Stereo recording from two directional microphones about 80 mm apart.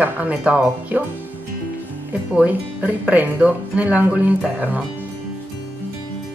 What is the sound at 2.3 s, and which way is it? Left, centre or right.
Speech, centre.